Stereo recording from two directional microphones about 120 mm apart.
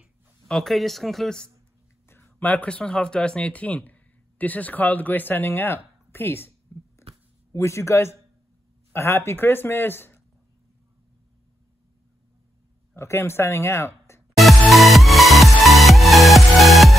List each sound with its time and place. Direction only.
0.5 s speech: centre (ahead or behind)
2.0 s speech: 20° left (ahead or behind)
12.9 s speech: 20° left (ahead or behind)
14.3 s music: centre (ahead or behind)